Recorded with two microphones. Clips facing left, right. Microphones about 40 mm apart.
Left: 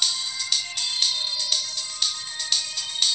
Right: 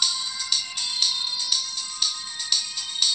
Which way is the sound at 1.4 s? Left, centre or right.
Left.